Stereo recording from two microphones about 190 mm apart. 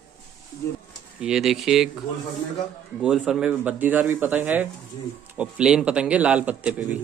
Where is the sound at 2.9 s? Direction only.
5° right (ahead or behind).